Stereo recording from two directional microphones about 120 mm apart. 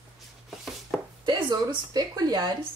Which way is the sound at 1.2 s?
40° right (ahead or behind).